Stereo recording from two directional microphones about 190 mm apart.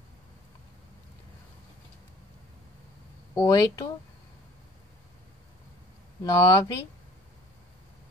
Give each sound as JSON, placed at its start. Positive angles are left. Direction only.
{"t": 3.3, "sound": "speech", "side_deg": 20}
{"t": 6.2, "sound": "speech", "side_deg": 20}